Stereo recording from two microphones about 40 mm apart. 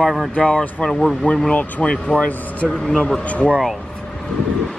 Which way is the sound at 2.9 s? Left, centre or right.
Centre.